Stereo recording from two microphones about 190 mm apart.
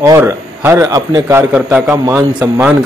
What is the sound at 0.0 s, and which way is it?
A man's voice, 15° right (ahead or behind).